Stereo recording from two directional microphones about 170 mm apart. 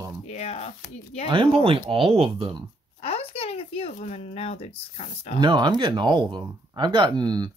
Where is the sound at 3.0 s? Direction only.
35° left (ahead or behind).